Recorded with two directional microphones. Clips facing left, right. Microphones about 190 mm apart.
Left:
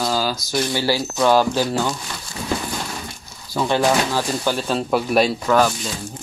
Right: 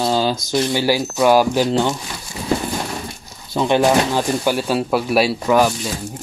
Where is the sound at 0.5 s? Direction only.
15° right (ahead or behind).